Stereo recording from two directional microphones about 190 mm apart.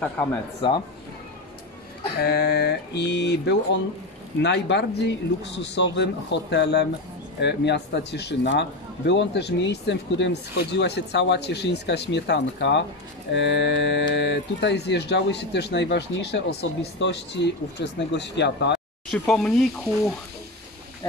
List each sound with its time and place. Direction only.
0.6 s speech: 25° left (ahead or behind)
2.1 s speech: 60° left (ahead or behind)
19.0 s sizzle: 5° left (ahead or behind)